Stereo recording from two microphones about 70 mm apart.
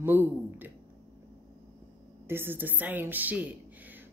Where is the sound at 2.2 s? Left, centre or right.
Right.